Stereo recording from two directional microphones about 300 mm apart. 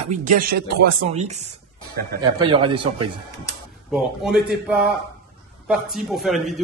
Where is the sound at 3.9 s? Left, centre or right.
Centre.